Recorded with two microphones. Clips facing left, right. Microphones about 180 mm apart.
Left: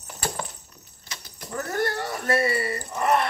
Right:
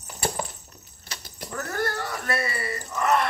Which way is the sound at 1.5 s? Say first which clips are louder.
Left 2 dB; 20° left (ahead or behind).